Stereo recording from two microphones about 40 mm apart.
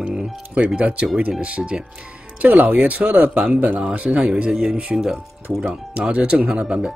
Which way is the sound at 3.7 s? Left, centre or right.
Right.